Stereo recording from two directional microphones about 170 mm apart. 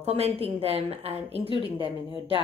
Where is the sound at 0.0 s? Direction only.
35° right (ahead or behind).